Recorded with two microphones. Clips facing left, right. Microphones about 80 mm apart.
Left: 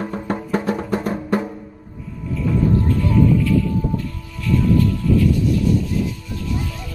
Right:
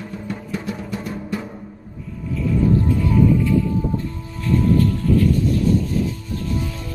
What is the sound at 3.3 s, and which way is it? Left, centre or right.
Music, right.